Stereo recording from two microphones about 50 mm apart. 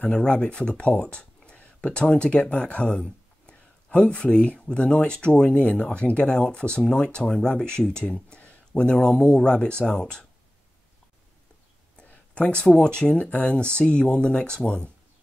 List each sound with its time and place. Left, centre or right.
0.1 s speech: centre
5.6 s speech: left
12.0 s speech: left
14.6 s speech: left